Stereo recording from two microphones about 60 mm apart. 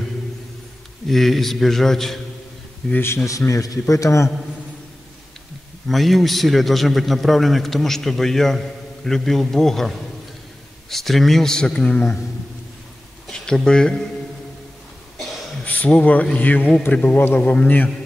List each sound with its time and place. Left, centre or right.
1.0 s a man's voice: centre
3.3 s a man's voice: left
5.9 s a man's voice: centre
13.3 s speech: centre
15.6 s a sound: left
15.9 s a man's voice: left
17.4 s a man's voice: left